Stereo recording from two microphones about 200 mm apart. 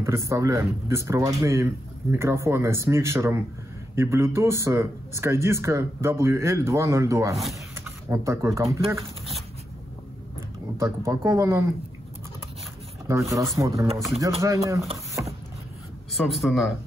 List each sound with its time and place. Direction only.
0.0 s speech: 15° right (ahead or behind)
7.7 s a sound: 15° right (ahead or behind)
10.8 s speech: 15° right (ahead or behind)
13.0 s speech: 15° right (ahead or behind)
13.9 s a man's voice: centre (ahead or behind)
14.4 s speech: 15° right (ahead or behind)
15.2 s a sound: 10° right (ahead or behind)
16.1 s a man's voice: centre (ahead or behind)